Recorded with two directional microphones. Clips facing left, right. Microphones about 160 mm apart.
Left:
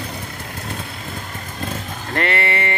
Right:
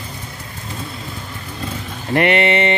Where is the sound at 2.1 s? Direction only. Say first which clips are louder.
Right 6 dB; 20° right (ahead or behind).